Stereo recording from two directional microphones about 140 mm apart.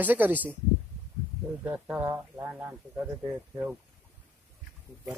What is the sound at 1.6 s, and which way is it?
Speech, 10° right (ahead or behind).